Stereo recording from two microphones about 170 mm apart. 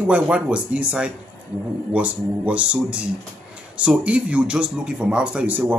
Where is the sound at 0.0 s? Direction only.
5° right (ahead or behind).